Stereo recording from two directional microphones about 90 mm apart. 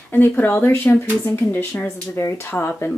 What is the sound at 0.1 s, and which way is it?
Speech, 20° left (ahead or behind).